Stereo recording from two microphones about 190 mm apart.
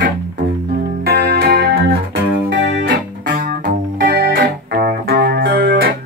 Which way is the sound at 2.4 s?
80° right.